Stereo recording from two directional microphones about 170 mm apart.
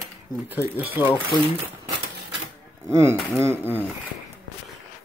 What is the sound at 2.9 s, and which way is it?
Speech, 15° right (ahead or behind).